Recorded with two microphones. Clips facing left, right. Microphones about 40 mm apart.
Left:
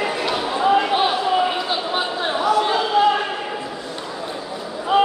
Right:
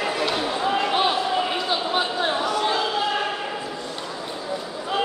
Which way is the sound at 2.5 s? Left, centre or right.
Centre.